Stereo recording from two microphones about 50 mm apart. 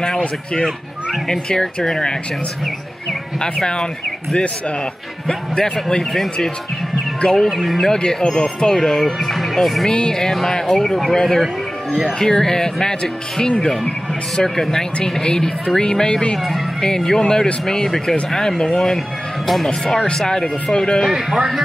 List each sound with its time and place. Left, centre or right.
1.2 s speech: centre
9.8 s speech: centre
16.3 s speech: centre
16.8 s speech: centre
21.1 s speech: centre